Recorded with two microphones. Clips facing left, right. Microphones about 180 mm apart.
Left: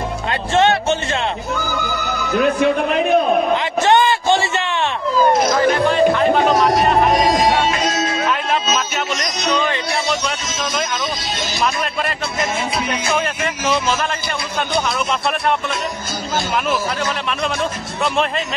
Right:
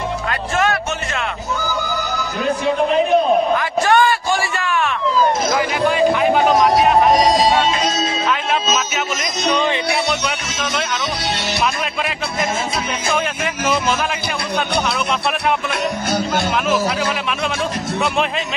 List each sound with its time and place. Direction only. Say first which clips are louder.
0.6 s speech: left 5 dB; 25° left (ahead or behind)
3.5 s a sound: left 1 dB; 25° left (ahead or behind)
5.6 s music: left 2 dB; 5° right (ahead or behind)
8.3 s music: even; centre (ahead or behind)
9.5 s music: right 1 dB; 20° right (ahead or behind)
13.1 s a sound: right 1 dB; centre (ahead or behind)